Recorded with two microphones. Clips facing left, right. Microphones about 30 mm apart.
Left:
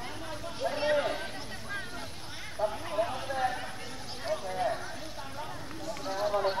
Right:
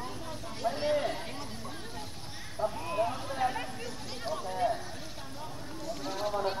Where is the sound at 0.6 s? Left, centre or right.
Left.